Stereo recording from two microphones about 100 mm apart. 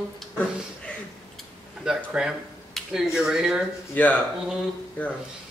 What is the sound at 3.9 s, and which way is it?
Speech, 15° left (ahead or behind).